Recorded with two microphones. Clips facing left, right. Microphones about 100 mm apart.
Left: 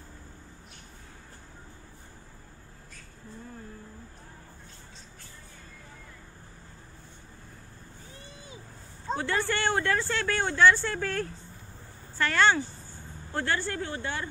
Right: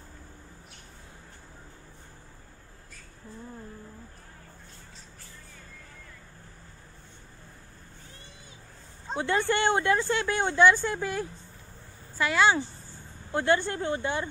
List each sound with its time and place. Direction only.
9.2 s speech: 20° right (ahead or behind)